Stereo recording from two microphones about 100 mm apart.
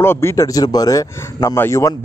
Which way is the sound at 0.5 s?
40° left (ahead or behind).